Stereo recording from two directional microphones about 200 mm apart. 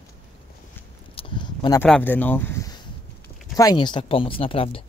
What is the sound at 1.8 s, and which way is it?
Speech, 10° left (ahead or behind).